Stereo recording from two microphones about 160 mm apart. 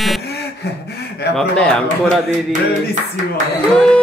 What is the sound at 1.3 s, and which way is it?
Speech, 5° left (ahead or behind).